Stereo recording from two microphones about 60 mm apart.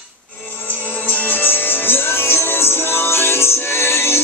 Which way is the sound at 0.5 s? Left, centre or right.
Left.